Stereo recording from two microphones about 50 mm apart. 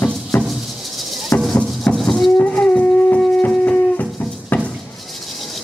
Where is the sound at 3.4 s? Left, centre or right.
Left.